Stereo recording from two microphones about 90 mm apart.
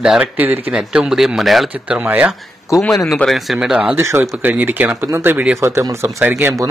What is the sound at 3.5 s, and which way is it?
Speech, 10° right (ahead or behind).